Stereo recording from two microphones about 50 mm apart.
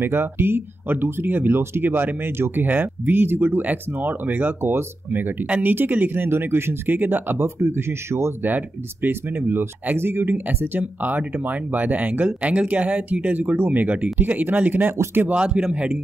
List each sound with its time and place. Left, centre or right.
0.0 s speech: right
1.6 s speech: right
2.6 s speech: right
8.4 s speech: right
15.3 s speech: right